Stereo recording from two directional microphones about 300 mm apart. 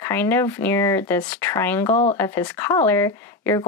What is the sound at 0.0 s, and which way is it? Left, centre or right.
Speech, centre.